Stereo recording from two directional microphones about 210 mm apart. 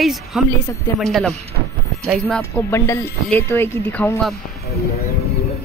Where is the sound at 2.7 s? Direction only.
15° left (ahead or behind).